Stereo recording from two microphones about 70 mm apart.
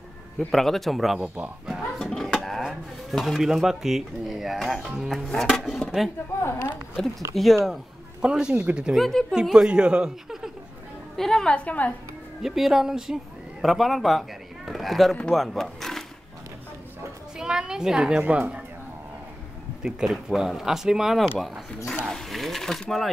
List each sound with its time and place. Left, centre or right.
0.5 s speech: centre
1.2 s speech: centre
1.7 s speech: centre
6.4 s speech: left
7.3 s speech: centre
8.2 s speech: centre
8.9 s speech: centre
9.3 s speech: centre
11.1 s a woman's voice: centre
12.4 s speech: centre
17.4 s a sound: centre
18.2 s speech: right
19.8 s speech: centre